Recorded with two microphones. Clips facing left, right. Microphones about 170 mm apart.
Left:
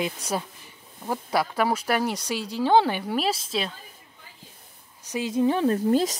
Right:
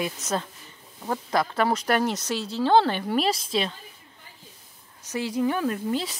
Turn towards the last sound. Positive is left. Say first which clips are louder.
# left 6 dB
turn(degrees=40)  # may be behind; listen again after turning